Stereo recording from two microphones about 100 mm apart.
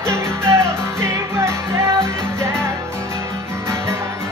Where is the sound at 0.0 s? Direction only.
25° right (ahead or behind).